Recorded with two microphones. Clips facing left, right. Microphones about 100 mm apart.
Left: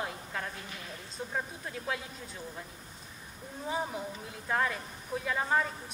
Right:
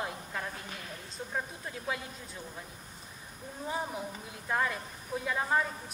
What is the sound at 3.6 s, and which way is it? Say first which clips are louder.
Speech: left 1 dB; centre (ahead or behind).